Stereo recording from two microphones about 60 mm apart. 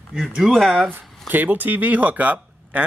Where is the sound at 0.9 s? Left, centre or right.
Right.